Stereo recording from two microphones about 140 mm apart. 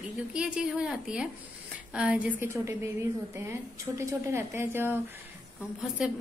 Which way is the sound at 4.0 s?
20° right (ahead or behind).